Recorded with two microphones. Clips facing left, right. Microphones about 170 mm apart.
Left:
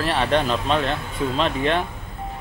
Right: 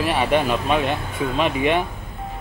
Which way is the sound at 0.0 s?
10° right (ahead or behind).